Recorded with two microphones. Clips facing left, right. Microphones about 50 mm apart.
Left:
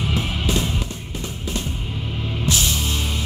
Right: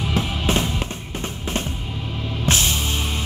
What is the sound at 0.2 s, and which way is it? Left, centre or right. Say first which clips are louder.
Music: right 1 dB; right.